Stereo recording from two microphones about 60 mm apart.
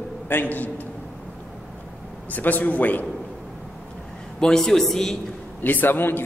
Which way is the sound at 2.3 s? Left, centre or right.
Left.